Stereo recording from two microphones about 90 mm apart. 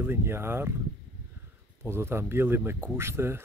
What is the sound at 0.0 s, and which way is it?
Speech, 25° right (ahead or behind).